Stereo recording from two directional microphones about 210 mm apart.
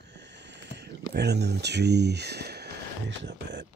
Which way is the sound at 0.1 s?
55° right (ahead or behind).